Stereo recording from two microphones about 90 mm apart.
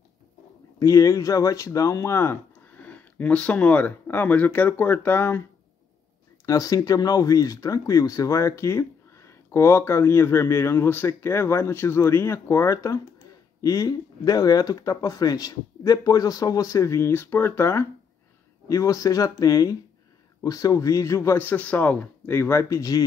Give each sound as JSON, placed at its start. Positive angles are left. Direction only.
{"t": 0.7, "sound": "speech", "side_deg": 40}
{"t": 6.4, "sound": "speech", "side_deg": 40}